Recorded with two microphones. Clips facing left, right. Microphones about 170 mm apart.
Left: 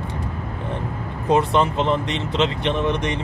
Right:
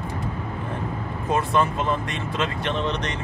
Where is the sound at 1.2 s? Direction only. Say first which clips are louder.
Left 4 dB; 20° left (ahead or behind).